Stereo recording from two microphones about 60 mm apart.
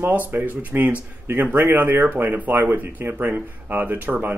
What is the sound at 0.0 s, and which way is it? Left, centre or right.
Speech, right.